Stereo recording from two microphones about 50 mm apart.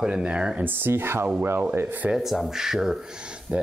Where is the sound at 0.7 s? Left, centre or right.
Right.